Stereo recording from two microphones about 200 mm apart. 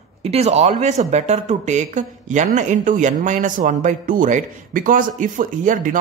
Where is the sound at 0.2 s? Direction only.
30° right (ahead or behind).